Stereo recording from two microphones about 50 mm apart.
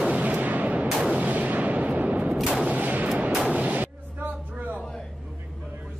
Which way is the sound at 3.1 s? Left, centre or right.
Centre.